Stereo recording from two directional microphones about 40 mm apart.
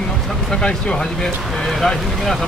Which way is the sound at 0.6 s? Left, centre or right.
Centre.